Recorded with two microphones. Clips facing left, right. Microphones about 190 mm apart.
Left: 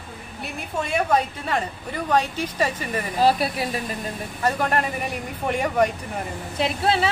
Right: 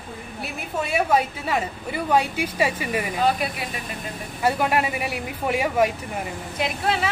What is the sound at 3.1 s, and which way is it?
Speech, 35° left (ahead or behind).